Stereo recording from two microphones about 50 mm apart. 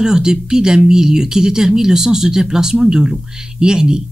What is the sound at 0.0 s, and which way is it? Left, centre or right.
A woman's voice, centre.